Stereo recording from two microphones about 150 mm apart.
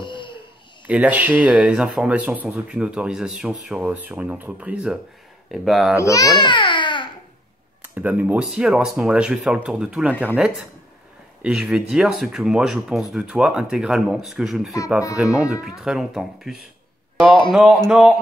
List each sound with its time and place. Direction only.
0.0 s a sound: 30° left (ahead or behind)
0.8 s speech: 10° right (ahead or behind)
5.9 s speech: 20° left (ahead or behind)
7.8 s speech: 10° right (ahead or behind)